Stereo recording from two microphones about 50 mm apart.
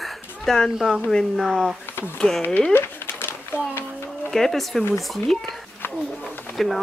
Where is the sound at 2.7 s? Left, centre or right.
Left.